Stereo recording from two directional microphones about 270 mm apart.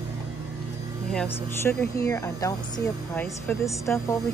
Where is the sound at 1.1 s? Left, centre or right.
Centre.